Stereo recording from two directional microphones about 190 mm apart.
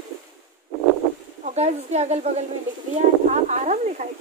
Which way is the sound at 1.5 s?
35° right (ahead or behind).